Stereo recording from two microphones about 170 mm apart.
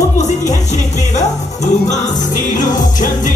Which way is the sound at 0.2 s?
45° left (ahead or behind).